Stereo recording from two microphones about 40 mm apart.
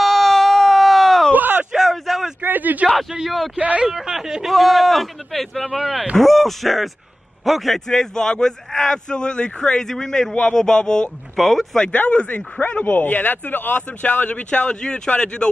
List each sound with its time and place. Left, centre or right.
0.0 s a sound: centre
1.3 s a sound: right
1.9 s a sound: centre
2.4 s speech: right
3.5 s speech: right
3.9 s speech: centre
4.5 s speech: centre
7.9 s a man's voice: centre
9.8 s a man's voice: centre
11.3 s speech: centre
11.9 s speech: left
14.5 s speech: left